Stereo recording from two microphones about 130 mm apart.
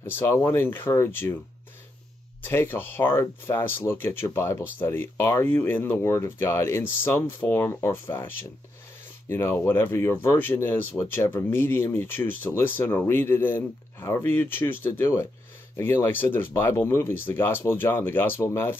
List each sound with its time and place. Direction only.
0.0 s speech: 15° left (ahead or behind)
2.4 s speech: 15° left (ahead or behind)
9.3 s speech: 15° left (ahead or behind)